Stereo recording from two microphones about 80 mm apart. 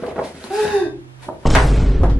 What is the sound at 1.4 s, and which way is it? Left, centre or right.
Music, centre.